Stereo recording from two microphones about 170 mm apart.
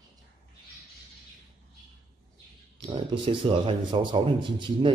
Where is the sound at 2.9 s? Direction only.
30° right (ahead or behind).